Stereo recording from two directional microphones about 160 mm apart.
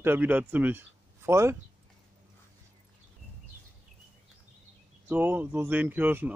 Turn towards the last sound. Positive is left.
turn(degrees=-10)  # may be behind; listen again after turning